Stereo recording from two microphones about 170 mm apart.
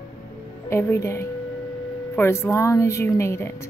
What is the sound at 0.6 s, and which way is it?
A woman's voice, 15° left (ahead or behind).